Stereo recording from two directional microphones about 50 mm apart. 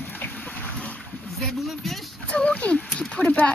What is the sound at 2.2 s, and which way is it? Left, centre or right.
Speech, left.